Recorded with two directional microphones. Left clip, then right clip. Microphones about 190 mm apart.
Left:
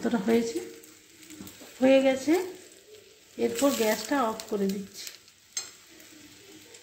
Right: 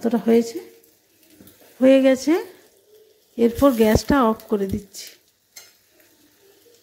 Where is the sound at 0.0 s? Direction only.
35° right (ahead or behind).